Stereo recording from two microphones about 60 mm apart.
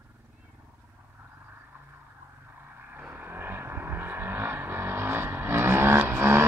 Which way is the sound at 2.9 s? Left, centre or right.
Right.